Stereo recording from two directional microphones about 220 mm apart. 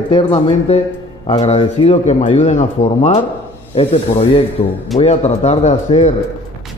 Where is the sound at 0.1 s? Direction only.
25° left (ahead or behind).